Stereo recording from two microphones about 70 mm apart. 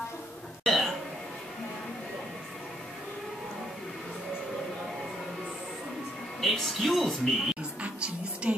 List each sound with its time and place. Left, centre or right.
0.7 s a sound: centre
6.4 s speech: centre
7.8 s music: centre